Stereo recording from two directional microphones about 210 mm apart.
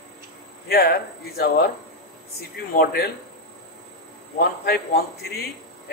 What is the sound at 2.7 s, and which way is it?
Speech, 45° left (ahead or behind).